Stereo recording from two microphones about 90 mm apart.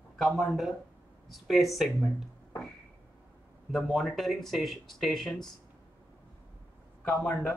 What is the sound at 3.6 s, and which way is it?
Speech, centre (ahead or behind).